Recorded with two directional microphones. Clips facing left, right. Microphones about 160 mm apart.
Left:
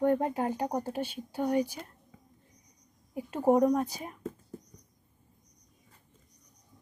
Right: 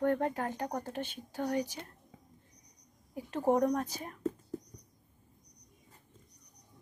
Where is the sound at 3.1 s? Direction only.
15° left (ahead or behind).